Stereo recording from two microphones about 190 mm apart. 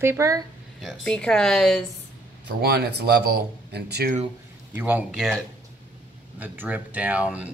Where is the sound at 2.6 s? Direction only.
60° right (ahead or behind).